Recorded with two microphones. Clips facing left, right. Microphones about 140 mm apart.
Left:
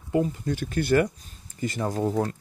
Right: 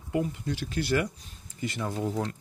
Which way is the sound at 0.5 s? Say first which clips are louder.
Left 5 dB; 50° left (ahead or behind).